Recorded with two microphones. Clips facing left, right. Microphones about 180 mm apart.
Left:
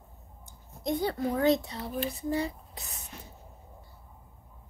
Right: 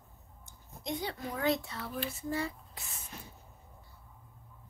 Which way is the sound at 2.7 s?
40° left (ahead or behind).